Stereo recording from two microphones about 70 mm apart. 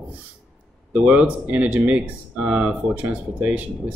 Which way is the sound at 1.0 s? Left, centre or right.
Centre.